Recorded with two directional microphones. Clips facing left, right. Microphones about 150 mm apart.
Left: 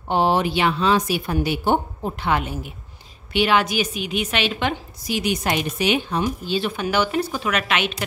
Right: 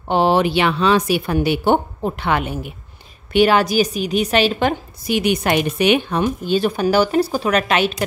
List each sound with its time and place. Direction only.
0.1 s speech: 85° right; by 2.7 s 65° right (ahead or behind)
3.3 s a woman's voice: 40° right (ahead or behind)
5.0 s a woman's voice: 60° right (ahead or behind); by 7.9 s 35° right (ahead or behind)